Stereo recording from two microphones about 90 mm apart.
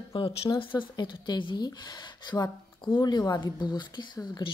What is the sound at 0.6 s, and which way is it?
Speech, 65° left (ahead or behind).